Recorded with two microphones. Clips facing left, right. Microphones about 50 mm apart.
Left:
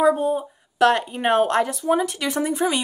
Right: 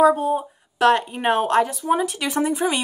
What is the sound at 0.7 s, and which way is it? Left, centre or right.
Speech, centre.